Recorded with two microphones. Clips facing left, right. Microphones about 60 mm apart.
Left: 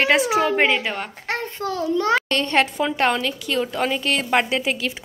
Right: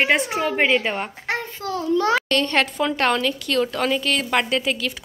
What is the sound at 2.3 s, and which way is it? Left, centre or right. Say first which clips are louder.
A woman's voice: even; left.